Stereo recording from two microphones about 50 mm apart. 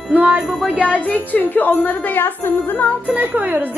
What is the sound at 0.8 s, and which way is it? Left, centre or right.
A woman's voice, left.